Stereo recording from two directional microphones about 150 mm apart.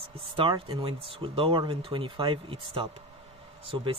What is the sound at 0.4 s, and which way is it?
Speech, 35° right (ahead or behind).